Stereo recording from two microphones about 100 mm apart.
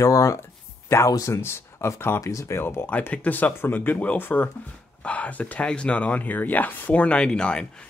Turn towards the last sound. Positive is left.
turn(degrees=10)  # may be behind; listen again after turning